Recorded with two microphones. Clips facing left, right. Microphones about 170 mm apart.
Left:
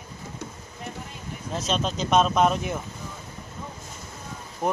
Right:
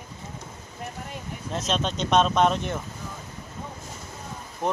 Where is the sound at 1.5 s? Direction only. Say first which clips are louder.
Even; centre (ahead or behind).